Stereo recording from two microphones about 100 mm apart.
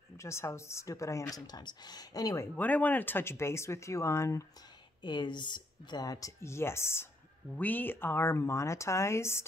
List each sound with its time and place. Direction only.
0.2 s speech: 30° left (ahead or behind)
1.3 s speech: 45° left (ahead or behind)
2.5 s speech: 15° left (ahead or behind)
5.0 s speech: 50° left (ahead or behind); by 9.5 s 25° left (ahead or behind)